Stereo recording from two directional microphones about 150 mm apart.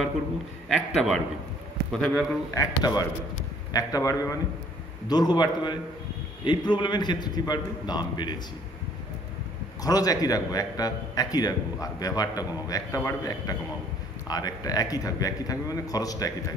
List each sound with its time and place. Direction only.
0.7 s a man's voice: centre (ahead or behind)
2.5 s a man's voice: 25° left (ahead or behind)
9.8 s a man's voice: 25° left (ahead or behind)